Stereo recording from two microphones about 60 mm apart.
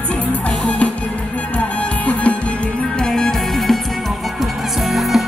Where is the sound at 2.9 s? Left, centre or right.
Centre.